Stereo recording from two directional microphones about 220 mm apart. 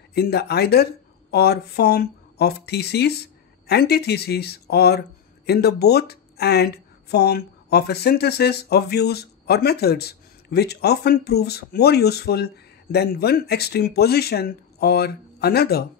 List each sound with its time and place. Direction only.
0.1 s speech: 45° left (ahead or behind)